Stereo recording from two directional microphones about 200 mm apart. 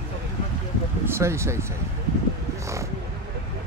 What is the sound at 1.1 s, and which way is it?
Speech, 15° right (ahead or behind).